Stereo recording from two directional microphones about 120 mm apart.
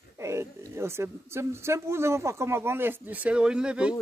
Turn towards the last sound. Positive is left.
turn(degrees=-10)  # may be behind; listen again after turning